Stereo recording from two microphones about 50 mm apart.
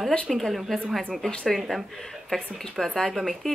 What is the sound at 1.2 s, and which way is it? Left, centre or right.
Speech, left.